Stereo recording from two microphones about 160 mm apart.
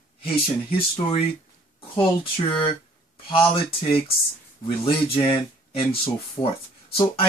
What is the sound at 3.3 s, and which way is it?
Speech, 35° left (ahead or behind).